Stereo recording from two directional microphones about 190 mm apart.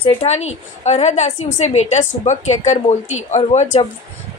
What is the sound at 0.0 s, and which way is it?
A woman's voice, 35° left (ahead or behind).